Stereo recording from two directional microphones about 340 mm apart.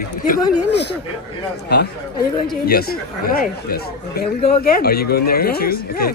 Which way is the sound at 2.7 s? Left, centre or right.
Left.